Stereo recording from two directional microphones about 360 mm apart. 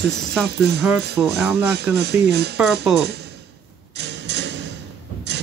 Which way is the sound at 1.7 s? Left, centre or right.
Right.